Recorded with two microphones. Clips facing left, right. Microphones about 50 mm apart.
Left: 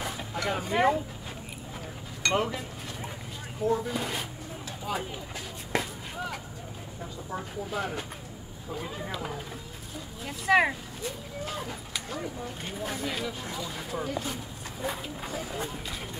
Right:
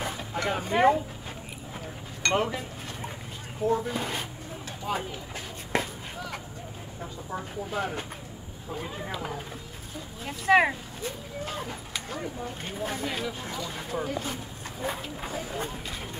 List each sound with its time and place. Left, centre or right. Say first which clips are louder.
0.3 s speech: right 2 dB; right
2.2 s speech: right 1 dB; right
3.6 s speech: right 1 dB; right
5.7 s a sound: right 2 dB; right
7.7 s speech: right 2 dB; right
10.2 s speech: right 2 dB; right